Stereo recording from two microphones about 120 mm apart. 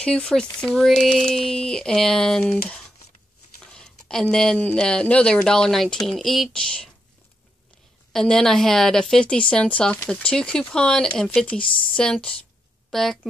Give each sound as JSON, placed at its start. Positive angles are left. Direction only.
{"t": 0.0, "sound": "speech", "side_deg": 5}
{"t": 8.1, "sound": "speech", "side_deg": 5}
{"t": 11.7, "sound": "speech", "side_deg": 45}
{"t": 12.0, "sound": "speech", "side_deg": 5}